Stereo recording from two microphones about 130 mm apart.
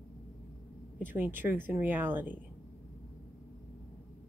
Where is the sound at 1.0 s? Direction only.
15° right (ahead or behind).